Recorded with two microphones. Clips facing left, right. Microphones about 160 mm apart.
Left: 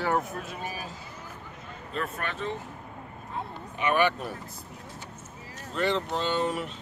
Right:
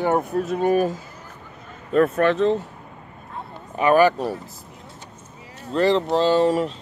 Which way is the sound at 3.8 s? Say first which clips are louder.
Right 9 dB; 40° right (ahead or behind).